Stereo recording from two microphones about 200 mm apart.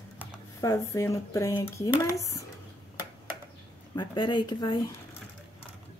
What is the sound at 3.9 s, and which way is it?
Speech, 20° left (ahead or behind).